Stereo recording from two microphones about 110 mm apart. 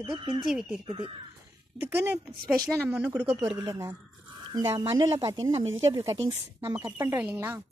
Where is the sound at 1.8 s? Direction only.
20° right (ahead or behind).